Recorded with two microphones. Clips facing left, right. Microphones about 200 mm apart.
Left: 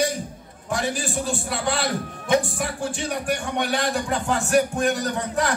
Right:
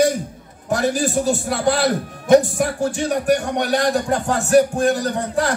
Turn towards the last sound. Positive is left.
turn(degrees=-35)  # may be behind; listen again after turning